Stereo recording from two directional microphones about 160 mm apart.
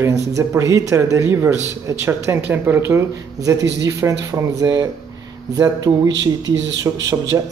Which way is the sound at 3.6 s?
90° right.